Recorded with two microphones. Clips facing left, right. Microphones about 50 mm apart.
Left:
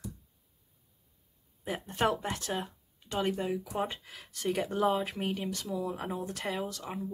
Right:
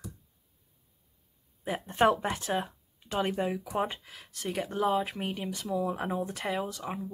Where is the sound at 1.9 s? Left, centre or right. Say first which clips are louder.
Right 5 dB; right.